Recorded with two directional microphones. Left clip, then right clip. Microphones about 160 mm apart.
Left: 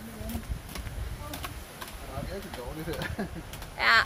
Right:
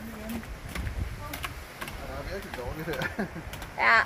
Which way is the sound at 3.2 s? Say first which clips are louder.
Right 3 dB; 25° left (ahead or behind).